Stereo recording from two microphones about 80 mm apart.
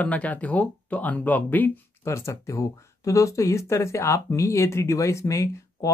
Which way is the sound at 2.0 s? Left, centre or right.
Left.